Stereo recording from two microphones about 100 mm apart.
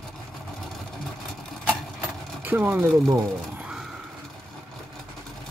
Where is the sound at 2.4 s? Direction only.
20° right (ahead or behind).